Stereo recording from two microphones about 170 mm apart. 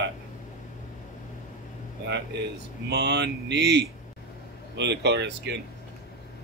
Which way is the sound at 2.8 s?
90° right.